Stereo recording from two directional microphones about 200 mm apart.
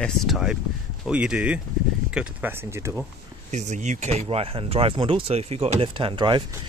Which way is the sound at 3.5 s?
35° right (ahead or behind).